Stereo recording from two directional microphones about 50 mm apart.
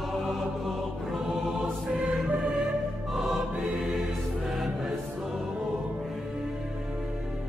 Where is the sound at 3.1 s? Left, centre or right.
Centre.